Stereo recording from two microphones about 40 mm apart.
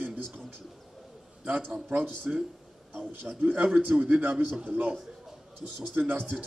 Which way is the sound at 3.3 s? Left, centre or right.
Right.